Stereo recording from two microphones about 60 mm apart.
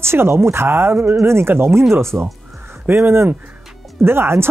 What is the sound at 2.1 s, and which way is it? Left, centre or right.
Speech, right.